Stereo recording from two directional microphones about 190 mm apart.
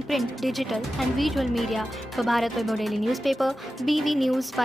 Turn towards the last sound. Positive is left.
turn(degrees=0)  # may be behind; listen again after turning